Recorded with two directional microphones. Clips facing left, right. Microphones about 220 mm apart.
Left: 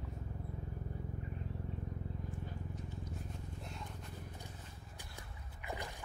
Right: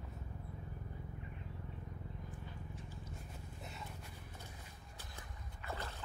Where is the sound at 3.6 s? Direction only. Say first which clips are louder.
Left 2 dB; 5° right (ahead or behind).